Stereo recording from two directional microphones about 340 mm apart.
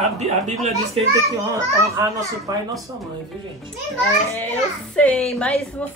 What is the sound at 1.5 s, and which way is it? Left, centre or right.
Speech, centre.